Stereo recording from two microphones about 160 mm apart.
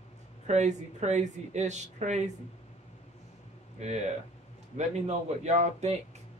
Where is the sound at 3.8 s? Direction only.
45° right (ahead or behind).